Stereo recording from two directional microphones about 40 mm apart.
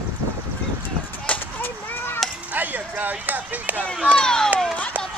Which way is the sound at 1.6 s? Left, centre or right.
Left.